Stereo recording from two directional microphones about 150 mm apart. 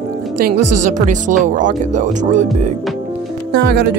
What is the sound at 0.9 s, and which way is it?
Speech, 55° right (ahead or behind).